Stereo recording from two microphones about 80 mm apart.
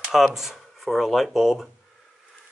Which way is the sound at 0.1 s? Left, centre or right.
Centre.